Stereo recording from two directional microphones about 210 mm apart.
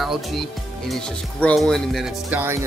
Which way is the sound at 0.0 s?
Centre (ahead or behind).